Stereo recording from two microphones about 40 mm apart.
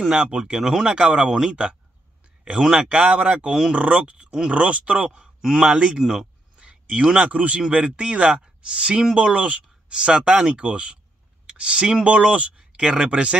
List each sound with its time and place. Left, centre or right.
0.1 s speech: right
0.6 s speech: centre
0.8 s speech: right
5.4 s speech: centre
5.7 s speech: right
6.6 s a sound: right
7.2 s speech: right
12.7 s speech: right